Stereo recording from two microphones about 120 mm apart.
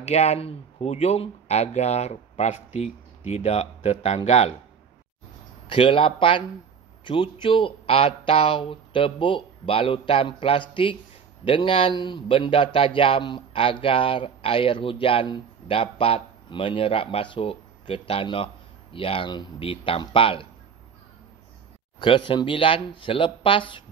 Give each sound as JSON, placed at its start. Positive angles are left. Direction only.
{"t": 0.0, "sound": "speech", "side_deg": 65}
{"t": 5.7, "sound": "speech", "side_deg": 45}
{"t": 22.0, "sound": "speech", "side_deg": 45}